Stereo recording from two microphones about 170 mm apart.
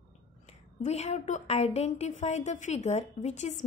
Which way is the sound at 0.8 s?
40° left (ahead or behind).